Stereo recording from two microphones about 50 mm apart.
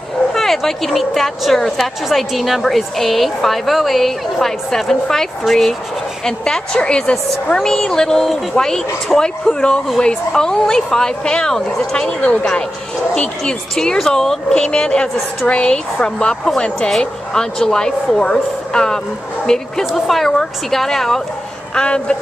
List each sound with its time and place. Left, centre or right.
0.3 s a woman's voice: centre
21.7 s speech: left